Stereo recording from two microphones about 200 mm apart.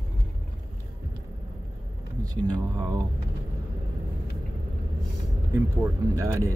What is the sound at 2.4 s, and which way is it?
Speech, 20° right (ahead or behind).